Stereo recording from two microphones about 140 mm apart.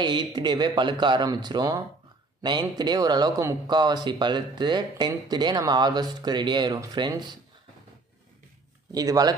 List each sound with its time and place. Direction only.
0.0 s speech: 30° right (ahead or behind)
8.9 s speech: 25° right (ahead or behind)